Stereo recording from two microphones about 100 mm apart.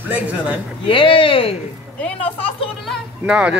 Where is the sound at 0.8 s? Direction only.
60° left (ahead or behind).